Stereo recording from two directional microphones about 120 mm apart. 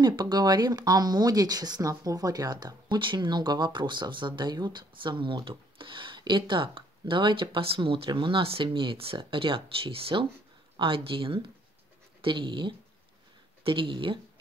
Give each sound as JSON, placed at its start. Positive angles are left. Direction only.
{"t": 0.0, "sound": "speech", "side_deg": -35}